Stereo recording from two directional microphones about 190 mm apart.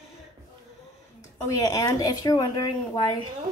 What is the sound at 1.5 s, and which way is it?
Speech, 20° left (ahead or behind).